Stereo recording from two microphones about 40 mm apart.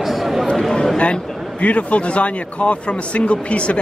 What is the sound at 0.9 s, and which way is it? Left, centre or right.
Speech, left.